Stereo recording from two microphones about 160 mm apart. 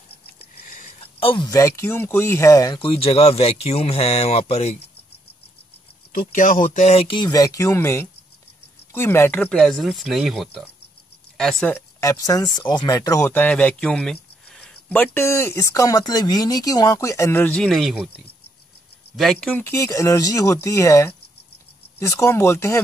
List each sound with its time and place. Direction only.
0.6 s a sound: 50° left (ahead or behind)
1.0 s speech: 35° left (ahead or behind)
6.1 s speech: 55° left (ahead or behind); by 18.1 s centre (ahead or behind)
19.1 s speech: 5° left (ahead or behind)
19.6 s speech: 20° left (ahead or behind)